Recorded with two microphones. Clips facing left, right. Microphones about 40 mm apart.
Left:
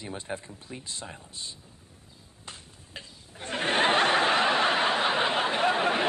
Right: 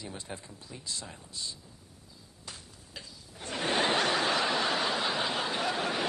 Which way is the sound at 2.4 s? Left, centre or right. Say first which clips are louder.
Left 2 dB; left.